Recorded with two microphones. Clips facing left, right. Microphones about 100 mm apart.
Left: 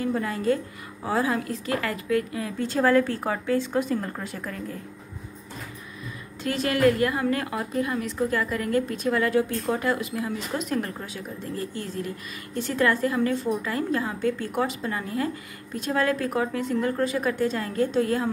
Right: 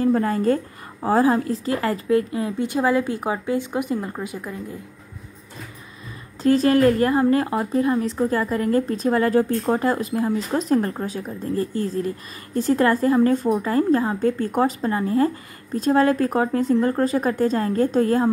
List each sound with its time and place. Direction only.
0.0 s a woman's voice: 40° right (ahead or behind); by 4.7 s 15° right (ahead or behind)
6.4 s a woman's voice: 35° right (ahead or behind)